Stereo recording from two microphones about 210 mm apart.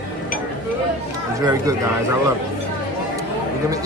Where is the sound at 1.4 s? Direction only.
15° right (ahead or behind).